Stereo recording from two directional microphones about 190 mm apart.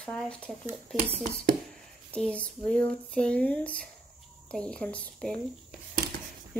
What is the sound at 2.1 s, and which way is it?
Speech, 5° left (ahead or behind).